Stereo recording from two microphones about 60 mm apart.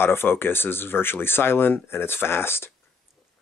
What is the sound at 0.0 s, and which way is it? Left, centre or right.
Speech, left.